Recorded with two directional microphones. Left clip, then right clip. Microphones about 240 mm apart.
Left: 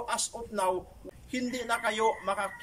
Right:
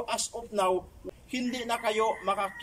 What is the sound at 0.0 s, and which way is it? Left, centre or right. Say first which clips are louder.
A man's voice: right 1 dB; centre.